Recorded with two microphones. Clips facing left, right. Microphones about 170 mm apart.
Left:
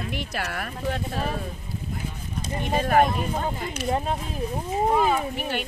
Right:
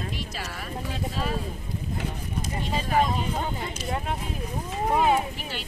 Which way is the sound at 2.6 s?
60° left (ahead or behind).